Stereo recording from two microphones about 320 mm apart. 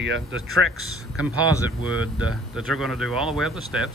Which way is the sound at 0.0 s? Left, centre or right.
Right.